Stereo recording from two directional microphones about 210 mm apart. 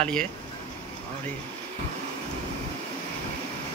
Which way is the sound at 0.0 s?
5° left (ahead or behind).